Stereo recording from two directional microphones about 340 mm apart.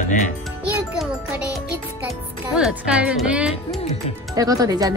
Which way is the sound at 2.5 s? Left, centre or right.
Centre.